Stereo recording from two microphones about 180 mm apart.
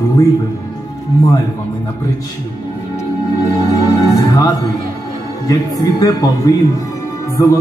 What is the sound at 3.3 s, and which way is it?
Music, 20° left (ahead or behind).